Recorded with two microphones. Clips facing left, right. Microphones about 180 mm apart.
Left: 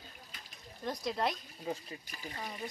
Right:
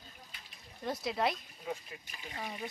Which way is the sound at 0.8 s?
5° right (ahead or behind).